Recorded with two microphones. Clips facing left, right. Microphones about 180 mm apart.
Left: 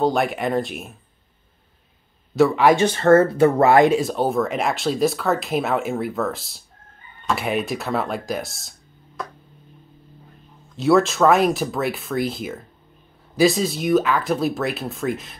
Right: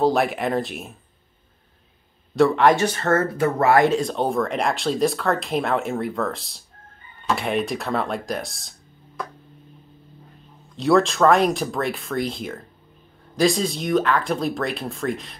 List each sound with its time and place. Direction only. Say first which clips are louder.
0.0 s speech: even; centre (ahead or behind)
2.3 s speech: even; 5° left (ahead or behind)
2.7 s speech: left 6 dB; 25° left (ahead or behind)
3.9 s speech: left 2 dB; 5° left (ahead or behind)
10.8 s speech: left 1 dB; centre (ahead or behind)